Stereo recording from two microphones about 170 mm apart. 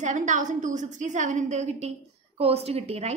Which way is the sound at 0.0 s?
45° right (ahead or behind).